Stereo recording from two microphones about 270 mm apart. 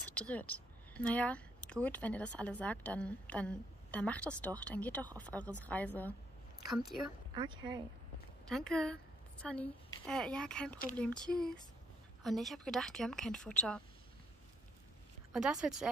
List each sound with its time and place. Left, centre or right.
0.0 s a woman's voice: centre
7.3 s speech: centre
8.5 s a woman's voice: centre
15.3 s a woman's voice: centre